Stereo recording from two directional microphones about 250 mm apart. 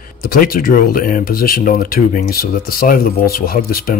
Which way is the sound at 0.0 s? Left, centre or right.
Left.